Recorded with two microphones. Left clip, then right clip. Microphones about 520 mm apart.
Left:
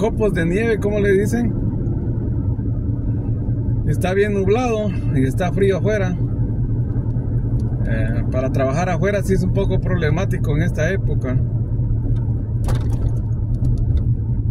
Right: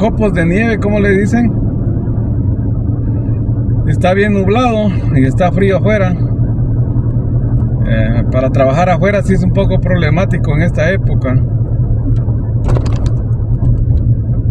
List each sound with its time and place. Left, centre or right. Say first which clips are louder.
0.0 s speech: right 6 dB; left
3.9 s speech: right 7 dB; left
7.9 s speech: right 9 dB; left